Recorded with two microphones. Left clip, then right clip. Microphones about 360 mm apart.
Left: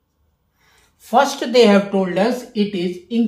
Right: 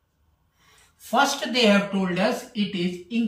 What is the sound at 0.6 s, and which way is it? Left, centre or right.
Speech, centre.